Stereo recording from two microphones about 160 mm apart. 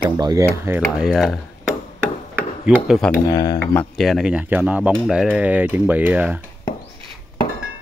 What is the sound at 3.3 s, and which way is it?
Speech, 25° left (ahead or behind).